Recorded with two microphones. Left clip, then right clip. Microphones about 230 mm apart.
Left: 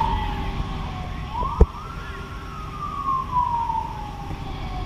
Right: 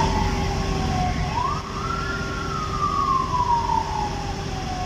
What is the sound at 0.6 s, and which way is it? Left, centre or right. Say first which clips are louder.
Emergency vehicle: right 9 dB; right.